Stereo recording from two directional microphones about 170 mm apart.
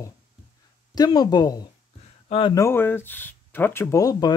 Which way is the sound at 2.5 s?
15° left (ahead or behind).